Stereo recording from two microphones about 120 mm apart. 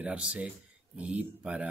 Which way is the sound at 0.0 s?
10° right (ahead or behind).